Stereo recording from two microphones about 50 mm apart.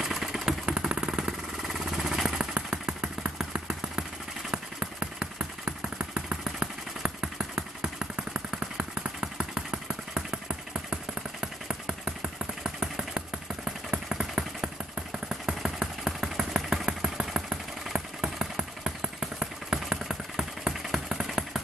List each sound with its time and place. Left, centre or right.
0.0 s vehicle: centre
1.7 s a sound: centre
2.5 s vehicle: centre